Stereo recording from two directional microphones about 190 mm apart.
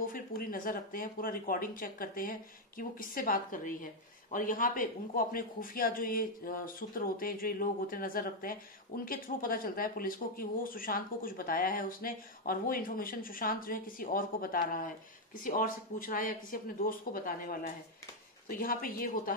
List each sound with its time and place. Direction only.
0.0 s speech: 50° left (ahead or behind)